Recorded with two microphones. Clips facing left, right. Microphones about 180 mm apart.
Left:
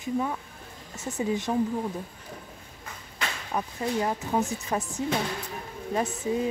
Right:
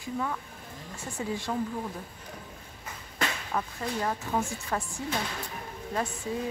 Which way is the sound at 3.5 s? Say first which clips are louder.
Left 3 dB; 20° left (ahead or behind).